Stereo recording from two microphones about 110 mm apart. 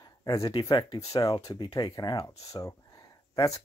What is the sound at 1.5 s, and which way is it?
Speech, 40° left (ahead or behind).